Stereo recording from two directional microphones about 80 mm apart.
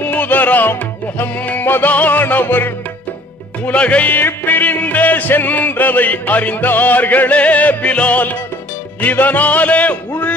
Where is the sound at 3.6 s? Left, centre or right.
Centre.